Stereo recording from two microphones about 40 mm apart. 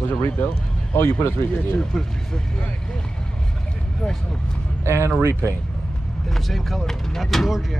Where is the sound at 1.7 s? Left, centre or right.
Centre.